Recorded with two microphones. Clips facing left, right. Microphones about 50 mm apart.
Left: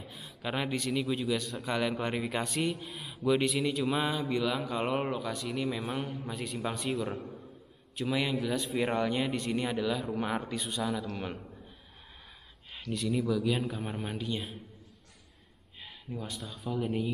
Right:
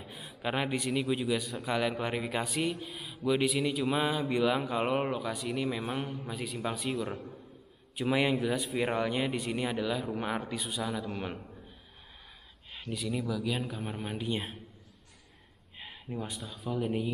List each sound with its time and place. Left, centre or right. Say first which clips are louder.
0.0 s a man's voice: right 2 dB; centre
7.9 s a man's voice: right 3 dB; centre
8.6 s a man's voice: left 1 dB; centre
12.9 s speech: left 4 dB; centre
14.1 s a man's voice: right 4 dB; centre
15.8 s a sound: right 2 dB; centre
16.3 s speech: left 1 dB; centre